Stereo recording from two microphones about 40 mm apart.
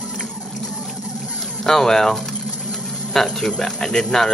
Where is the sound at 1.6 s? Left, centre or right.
Centre.